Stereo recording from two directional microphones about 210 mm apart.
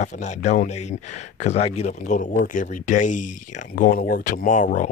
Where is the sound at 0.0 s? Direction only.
35° left (ahead or behind).